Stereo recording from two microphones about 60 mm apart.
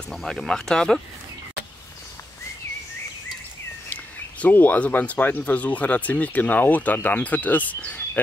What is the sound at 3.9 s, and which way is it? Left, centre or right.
Speech, left.